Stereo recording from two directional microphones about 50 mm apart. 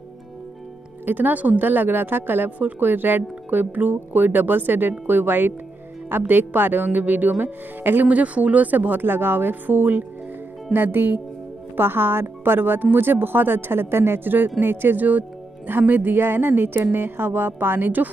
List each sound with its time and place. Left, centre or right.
1.0 s speech: right